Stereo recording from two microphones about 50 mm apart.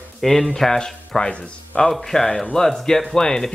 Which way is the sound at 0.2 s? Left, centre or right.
Centre.